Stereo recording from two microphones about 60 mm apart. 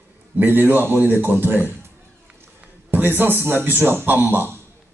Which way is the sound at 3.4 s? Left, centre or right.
Right.